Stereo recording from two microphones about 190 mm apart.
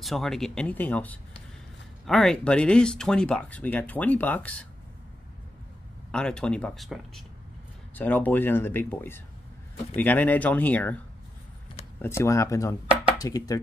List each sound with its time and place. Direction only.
0.0 s speech: centre (ahead or behind)
6.1 s speech: 5° left (ahead or behind)
12.0 s speech: 15° left (ahead or behind)